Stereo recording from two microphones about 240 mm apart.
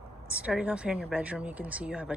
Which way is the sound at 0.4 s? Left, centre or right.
Centre.